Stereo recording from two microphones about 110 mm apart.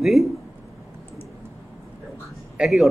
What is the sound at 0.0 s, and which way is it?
Speech, centre (ahead or behind).